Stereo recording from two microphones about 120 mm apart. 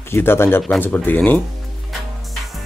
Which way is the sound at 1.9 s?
Centre (ahead or behind).